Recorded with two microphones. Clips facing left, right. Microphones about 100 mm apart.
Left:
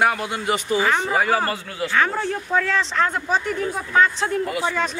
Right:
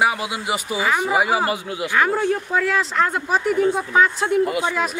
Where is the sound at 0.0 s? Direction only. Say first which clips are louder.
Even; 5° right (ahead or behind).